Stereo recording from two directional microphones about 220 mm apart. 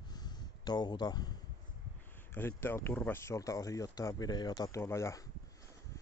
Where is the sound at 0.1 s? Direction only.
20° left (ahead or behind).